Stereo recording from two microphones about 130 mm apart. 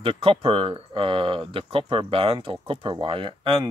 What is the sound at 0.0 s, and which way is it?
Speech, 45° right (ahead or behind).